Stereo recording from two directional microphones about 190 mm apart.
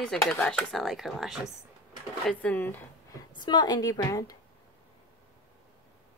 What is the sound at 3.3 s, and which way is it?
Speech, 25° left (ahead or behind).